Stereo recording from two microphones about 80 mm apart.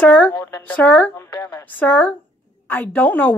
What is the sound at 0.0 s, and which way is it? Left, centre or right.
A woman's voice, centre.